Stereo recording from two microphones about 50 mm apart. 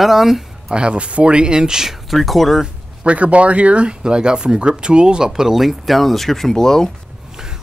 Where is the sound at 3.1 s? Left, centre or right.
Right; by 6.9 s centre.